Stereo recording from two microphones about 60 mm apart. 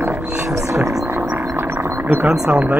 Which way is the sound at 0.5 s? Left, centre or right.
Right.